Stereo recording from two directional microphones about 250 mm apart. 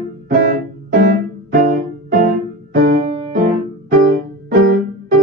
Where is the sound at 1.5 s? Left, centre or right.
Right.